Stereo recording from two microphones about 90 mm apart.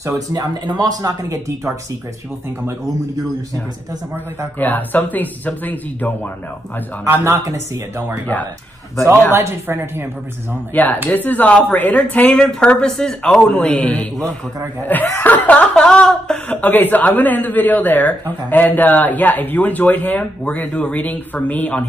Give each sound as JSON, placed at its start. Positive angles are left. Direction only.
{"t": 0.0, "sound": "speech", "side_deg": -45}
{"t": 4.6, "sound": "a man's voice", "side_deg": 20}
{"t": 7.1, "sound": "speech", "side_deg": -30}
{"t": 9.3, "sound": "speech", "side_deg": -30}
{"t": 10.7, "sound": "a man's voice", "side_deg": 20}
{"t": 15.0, "sound": "a man's voice", "side_deg": 25}